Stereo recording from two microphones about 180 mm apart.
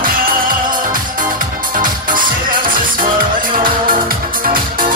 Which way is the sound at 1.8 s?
50° right (ahead or behind).